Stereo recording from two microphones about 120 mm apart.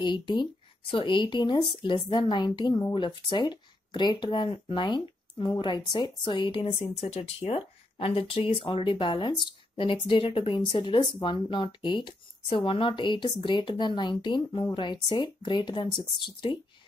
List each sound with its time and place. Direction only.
0.0 s speech: 40° left (ahead or behind)
6.8 s speech: 60° left (ahead or behind); by 16.5 s 40° left (ahead or behind)